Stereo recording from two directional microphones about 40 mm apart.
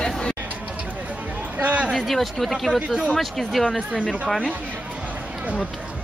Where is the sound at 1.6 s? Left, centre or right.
Right.